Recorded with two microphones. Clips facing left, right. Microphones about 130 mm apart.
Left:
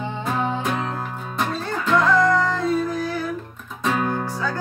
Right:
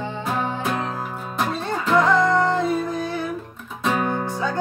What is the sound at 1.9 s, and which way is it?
Music, 20° right (ahead or behind).